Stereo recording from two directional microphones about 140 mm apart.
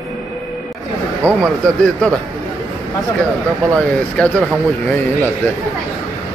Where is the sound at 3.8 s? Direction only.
10° left (ahead or behind).